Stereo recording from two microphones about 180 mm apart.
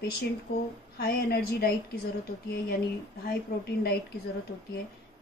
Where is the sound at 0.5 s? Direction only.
65° left (ahead or behind).